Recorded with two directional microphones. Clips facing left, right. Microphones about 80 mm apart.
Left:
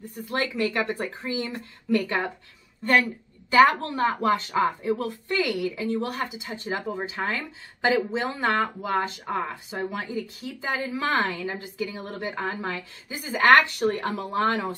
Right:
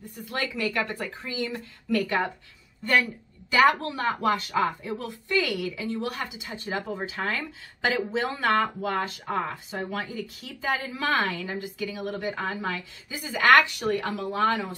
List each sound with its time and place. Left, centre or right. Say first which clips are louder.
0.3 s a woman's voice: left 3 dB; left
4.9 s a woman's voice: even; left
5.4 s a woman's voice: left 3 dB; left